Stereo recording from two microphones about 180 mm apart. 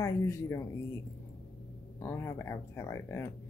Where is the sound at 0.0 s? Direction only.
15° left (ahead or behind).